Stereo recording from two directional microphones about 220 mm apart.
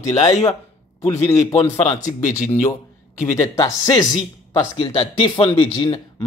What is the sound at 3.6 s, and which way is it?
Speech, 15° left (ahead or behind).